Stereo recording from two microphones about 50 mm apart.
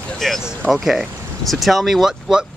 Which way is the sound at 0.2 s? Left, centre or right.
Centre.